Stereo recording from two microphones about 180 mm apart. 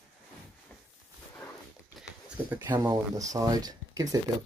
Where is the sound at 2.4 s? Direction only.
15° right (ahead or behind).